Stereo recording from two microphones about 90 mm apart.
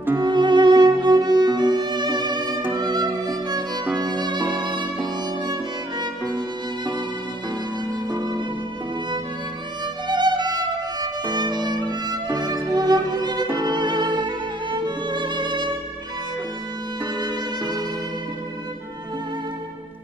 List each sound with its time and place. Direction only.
0.2 s music: 55° right (ahead or behind)
8.2 s music: 50° right (ahead or behind)
10.0 s music: 55° right (ahead or behind)
17.2 s music: 50° right (ahead or behind)